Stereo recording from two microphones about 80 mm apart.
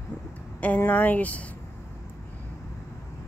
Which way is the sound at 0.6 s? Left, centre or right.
Left.